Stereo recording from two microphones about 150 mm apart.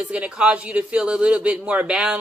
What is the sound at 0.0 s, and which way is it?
A man's voice, 10° right (ahead or behind).